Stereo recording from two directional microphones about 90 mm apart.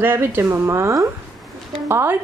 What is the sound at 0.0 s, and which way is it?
A woman's voice, 25° right (ahead or behind).